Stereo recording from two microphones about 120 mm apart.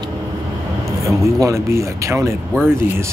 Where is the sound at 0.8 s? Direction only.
25° right (ahead or behind).